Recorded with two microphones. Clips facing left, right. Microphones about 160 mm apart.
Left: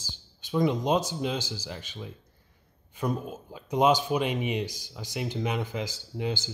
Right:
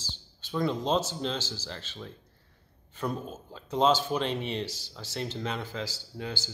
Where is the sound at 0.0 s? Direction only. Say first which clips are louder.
Right 1 dB; 15° left (ahead or behind).